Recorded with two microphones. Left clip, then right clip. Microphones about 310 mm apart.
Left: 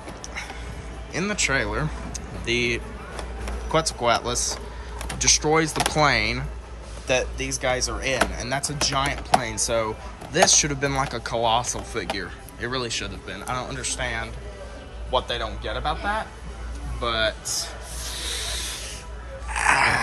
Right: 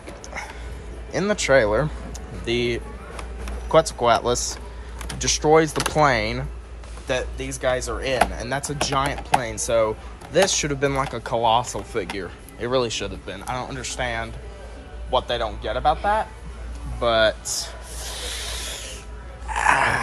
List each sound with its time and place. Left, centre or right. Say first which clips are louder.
1.1 s speech: right 5 dB; centre
17.0 s rub: right 5 dB; centre
19.4 s a sound: right 1 dB; centre